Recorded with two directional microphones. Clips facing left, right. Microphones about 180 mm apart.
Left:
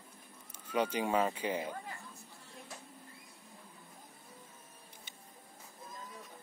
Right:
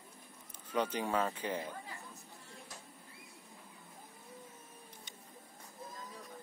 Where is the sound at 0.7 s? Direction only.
10° left (ahead or behind).